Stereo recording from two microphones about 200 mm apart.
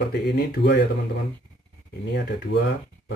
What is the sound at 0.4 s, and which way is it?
Speech, 55° left (ahead or behind).